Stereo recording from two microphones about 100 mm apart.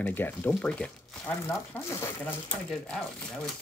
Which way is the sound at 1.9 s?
25° left (ahead or behind).